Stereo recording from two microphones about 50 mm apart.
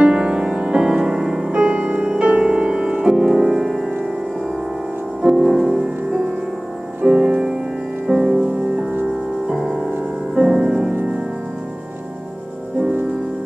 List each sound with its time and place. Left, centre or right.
0.0 s music: centre
5.2 s music: centre
9.5 s music: centre